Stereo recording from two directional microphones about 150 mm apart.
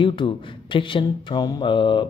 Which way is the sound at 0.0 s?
35° left (ahead or behind).